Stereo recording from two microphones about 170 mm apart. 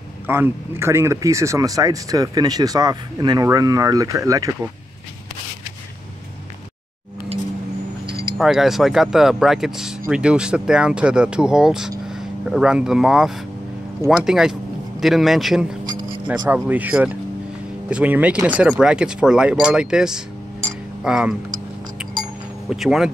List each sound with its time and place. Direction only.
0.3 s speech: 15° right (ahead or behind)
8.4 s speech: centre (ahead or behind)
22.7 s speech: 5° right (ahead or behind)